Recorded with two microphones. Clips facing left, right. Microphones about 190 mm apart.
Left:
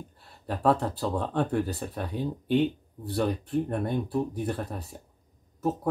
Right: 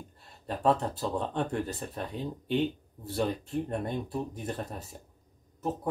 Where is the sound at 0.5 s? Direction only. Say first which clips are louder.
Left 2 dB; centre (ahead or behind).